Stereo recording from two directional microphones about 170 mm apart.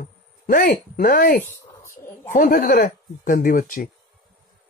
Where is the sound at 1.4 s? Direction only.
15° left (ahead or behind).